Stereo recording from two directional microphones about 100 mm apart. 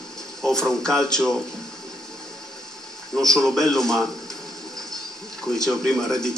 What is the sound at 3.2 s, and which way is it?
Speech, 5° left (ahead or behind).